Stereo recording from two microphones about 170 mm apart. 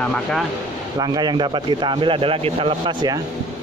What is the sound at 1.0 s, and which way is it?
Speech, 25° right (ahead or behind).